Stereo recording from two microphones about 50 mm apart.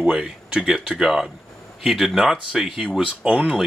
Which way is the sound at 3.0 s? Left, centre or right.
Centre.